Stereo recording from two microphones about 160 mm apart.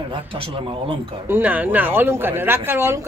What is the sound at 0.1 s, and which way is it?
Speech, 35° right (ahead or behind).